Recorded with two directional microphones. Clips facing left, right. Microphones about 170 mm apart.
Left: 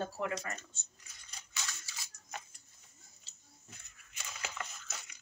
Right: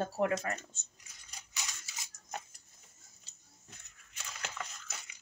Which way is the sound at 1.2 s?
15° right (ahead or behind).